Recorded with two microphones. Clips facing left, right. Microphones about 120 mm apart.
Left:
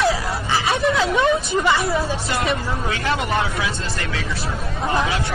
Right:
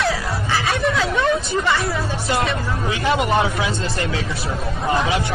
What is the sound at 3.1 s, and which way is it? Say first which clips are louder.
Speech: right 4 dB; 20° right (ahead or behind).